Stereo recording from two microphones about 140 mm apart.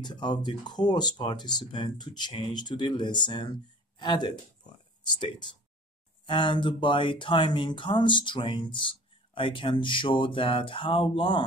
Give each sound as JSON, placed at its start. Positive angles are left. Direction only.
{"t": 0.0, "sound": "speech", "side_deg": 30}
{"t": 6.2, "sound": "speech", "side_deg": 35}